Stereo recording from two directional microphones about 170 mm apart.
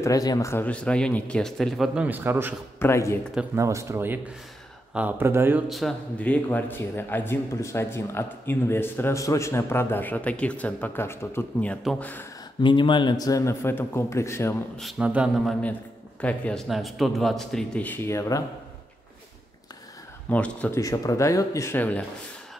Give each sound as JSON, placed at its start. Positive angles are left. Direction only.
{"t": 0.0, "sound": "a man's voice", "side_deg": 20}
{"t": 2.8, "sound": "a man's voice", "side_deg": 15}
{"t": 3.5, "sound": "speech", "side_deg": -15}
{"t": 5.7, "sound": "a man's voice", "side_deg": 0}
{"t": 12.6, "sound": "a man's voice", "side_deg": 30}
{"t": 14.8, "sound": "a man's voice", "side_deg": -5}
{"t": 16.2, "sound": "a man's voice", "side_deg": 5}
{"t": 20.2, "sound": "a man's voice", "side_deg": 10}
{"t": 20.8, "sound": "a man's voice", "side_deg": 20}